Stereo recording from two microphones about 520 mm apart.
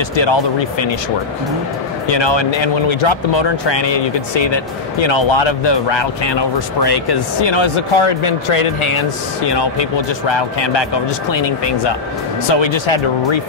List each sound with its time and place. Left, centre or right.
0.1 s speech: left
2.0 s speech: left
9.5 s speech: left